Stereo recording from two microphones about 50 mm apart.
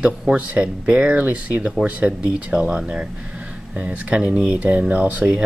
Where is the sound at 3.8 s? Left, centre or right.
Right.